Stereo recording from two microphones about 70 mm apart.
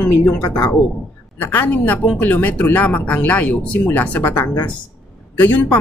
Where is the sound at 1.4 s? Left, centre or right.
Left.